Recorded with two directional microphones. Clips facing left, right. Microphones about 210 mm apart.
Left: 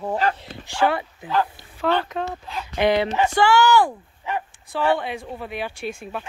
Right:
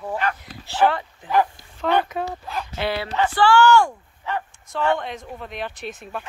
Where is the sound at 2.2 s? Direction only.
5° right (ahead or behind).